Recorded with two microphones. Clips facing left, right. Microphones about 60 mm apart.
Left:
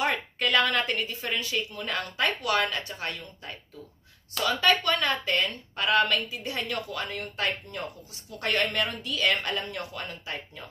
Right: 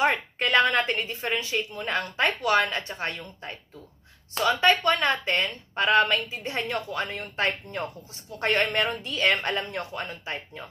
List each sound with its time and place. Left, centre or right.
0.0 s a woman's voice: right